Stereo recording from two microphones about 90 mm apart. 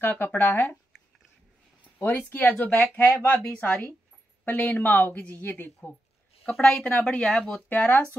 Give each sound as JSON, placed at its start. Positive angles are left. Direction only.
{"t": 0.0, "sound": "a woman's voice", "side_deg": 20}
{"t": 2.0, "sound": "a woman's voice", "side_deg": 25}
{"t": 3.3, "sound": "a woman's voice", "side_deg": 15}
{"t": 6.6, "sound": "speech", "side_deg": 10}